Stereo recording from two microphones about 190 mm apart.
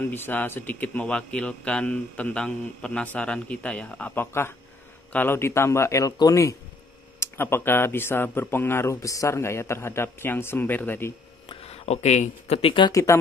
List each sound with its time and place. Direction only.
0.0 s speech: 10° left (ahead or behind)
11.4 s speech: 35° left (ahead or behind); by 13.2 s 15° left (ahead or behind)